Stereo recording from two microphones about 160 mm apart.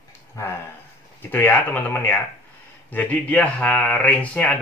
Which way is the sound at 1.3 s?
10° left (ahead or behind).